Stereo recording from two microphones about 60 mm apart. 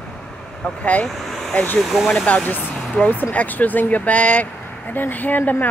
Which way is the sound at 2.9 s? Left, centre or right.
Left.